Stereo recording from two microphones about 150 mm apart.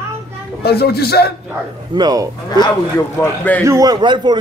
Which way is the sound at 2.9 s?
15° left (ahead or behind).